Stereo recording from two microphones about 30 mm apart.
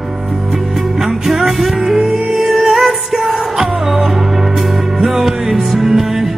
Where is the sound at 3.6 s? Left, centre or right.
Centre.